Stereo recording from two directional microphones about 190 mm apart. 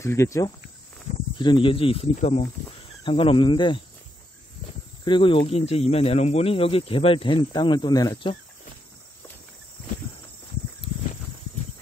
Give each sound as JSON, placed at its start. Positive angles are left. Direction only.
{"t": 0.0, "sound": "speech", "side_deg": 15}
{"t": 5.0, "sound": "speech", "side_deg": 25}